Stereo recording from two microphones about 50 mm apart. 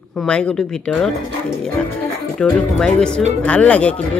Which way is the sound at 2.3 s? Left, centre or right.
Centre.